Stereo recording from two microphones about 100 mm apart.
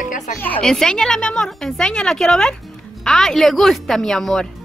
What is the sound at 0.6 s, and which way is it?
A woman's voice, 5° left (ahead or behind).